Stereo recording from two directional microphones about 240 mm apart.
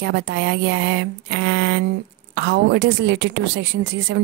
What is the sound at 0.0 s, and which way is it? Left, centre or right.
A woman's voice, right.